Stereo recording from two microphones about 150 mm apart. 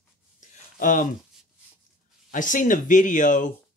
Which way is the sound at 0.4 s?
60° left (ahead or behind).